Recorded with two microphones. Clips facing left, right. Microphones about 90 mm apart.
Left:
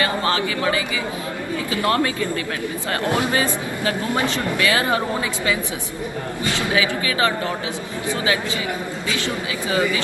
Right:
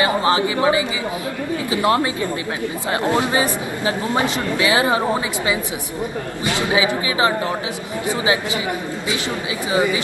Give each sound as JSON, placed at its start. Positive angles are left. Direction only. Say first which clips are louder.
{"t": 0.0, "sound": "speech", "louder": "right 4 dB", "side_deg": -20}
{"t": 6.4, "sound": "speech", "louder": "right 3 dB", "side_deg": -20}
{"t": 9.7, "sound": "speech", "louder": "right 2 dB", "side_deg": -20}